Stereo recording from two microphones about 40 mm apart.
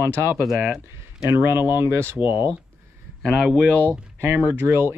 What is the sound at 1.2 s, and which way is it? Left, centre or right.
Speech, right.